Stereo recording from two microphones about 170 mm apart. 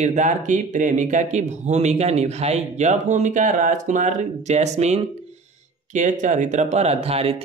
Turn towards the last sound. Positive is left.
turn(degrees=-35)  # may be behind; listen again after turning